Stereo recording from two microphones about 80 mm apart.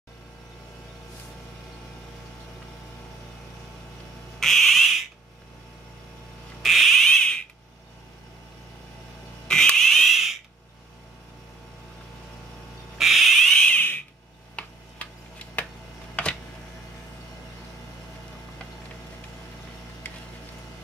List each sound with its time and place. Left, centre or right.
4.4 s frog: centre
6.6 s frog: centre
9.5 s frog: centre
12.9 s owl: centre
14.5 s tick-tock: centre